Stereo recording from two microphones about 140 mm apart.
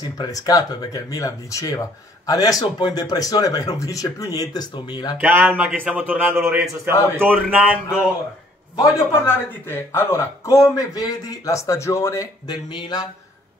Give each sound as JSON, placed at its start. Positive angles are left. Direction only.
{"t": 0.0, "sound": "speech", "side_deg": 30}
{"t": 5.2, "sound": "a man's voice", "side_deg": -15}
{"t": 8.7, "sound": "speech", "side_deg": 20}